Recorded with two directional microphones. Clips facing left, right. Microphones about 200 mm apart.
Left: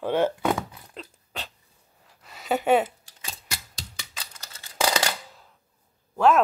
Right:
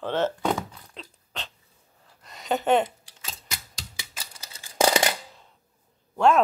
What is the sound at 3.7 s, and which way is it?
Typing, 5° right (ahead or behind).